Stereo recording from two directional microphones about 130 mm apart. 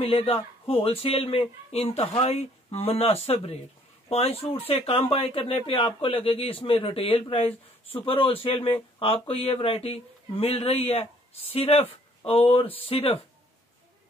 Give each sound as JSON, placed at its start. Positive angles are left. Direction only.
{"t": 0.0, "sound": "speech", "side_deg": 50}